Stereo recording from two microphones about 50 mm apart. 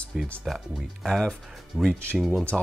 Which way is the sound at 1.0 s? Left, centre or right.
Centre.